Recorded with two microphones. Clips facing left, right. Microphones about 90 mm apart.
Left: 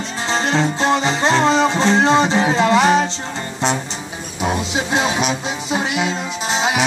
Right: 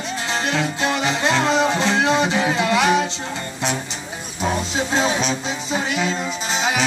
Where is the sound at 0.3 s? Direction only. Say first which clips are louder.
Left 5 dB; 30° left (ahead or behind).